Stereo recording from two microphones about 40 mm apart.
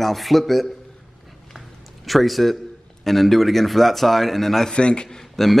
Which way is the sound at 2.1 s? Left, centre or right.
Centre.